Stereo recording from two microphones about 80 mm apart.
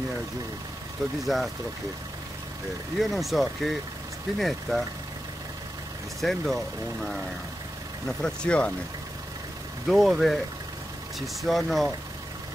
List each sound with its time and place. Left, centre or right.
1.2 s speech: centre
3.0 s speech: centre
6.2 s speech: centre
9.8 s speech: centre